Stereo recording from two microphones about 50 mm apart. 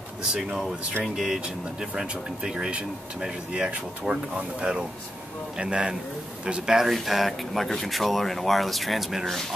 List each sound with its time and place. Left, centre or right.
0.5 s speech: centre
6.9 s speech: centre